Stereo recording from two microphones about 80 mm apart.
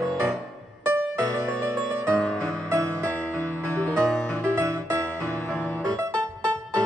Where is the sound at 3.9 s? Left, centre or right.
Centre.